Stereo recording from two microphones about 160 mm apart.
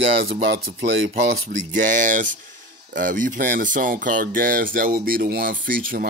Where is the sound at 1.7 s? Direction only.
55° right (ahead or behind).